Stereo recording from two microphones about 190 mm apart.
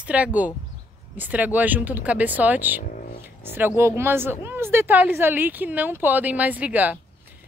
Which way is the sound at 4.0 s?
10° right (ahead or behind).